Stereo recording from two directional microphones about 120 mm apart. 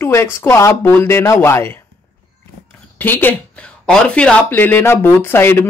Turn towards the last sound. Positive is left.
turn(degrees=20)  # may be behind; listen again after turning